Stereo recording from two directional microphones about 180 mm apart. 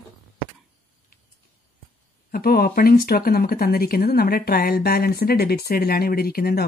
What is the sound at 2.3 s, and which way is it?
Speech, 55° left (ahead or behind).